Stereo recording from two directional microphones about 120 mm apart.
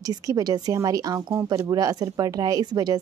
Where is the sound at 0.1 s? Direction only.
35° right (ahead or behind).